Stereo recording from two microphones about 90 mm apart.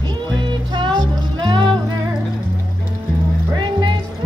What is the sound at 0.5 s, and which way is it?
Music, 60° right (ahead or behind).